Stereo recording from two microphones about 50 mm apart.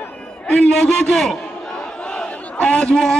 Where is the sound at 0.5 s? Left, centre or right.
Centre.